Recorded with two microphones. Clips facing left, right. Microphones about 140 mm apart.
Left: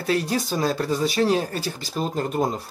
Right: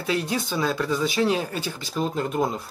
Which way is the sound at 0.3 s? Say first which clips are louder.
Left 2 dB; 40° left (ahead or behind).